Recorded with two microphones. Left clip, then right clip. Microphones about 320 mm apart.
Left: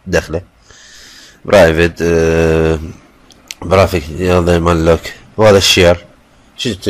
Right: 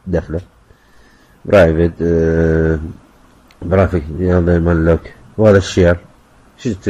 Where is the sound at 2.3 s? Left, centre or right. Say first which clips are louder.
Left 3 dB; left.